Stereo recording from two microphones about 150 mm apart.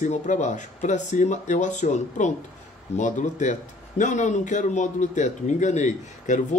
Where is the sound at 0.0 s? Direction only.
50° left (ahead or behind).